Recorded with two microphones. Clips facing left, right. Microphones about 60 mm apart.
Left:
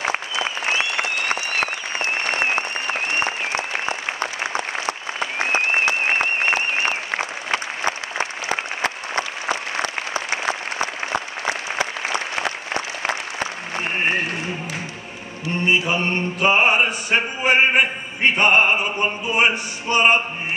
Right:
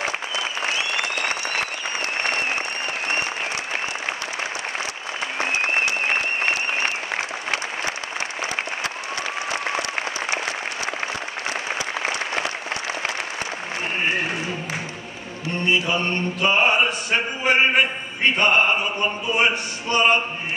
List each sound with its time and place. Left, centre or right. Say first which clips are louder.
7.5 s applause: left 5 dB; left
15.6 s mantra: left 2 dB; centre